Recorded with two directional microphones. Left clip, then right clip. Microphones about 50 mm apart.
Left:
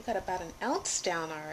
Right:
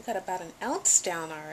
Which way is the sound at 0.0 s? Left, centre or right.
Centre.